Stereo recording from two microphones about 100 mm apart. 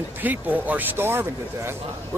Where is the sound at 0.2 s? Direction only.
15° right (ahead or behind).